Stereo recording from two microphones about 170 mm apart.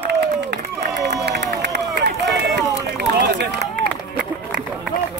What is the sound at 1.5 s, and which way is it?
Run, 75° right (ahead or behind).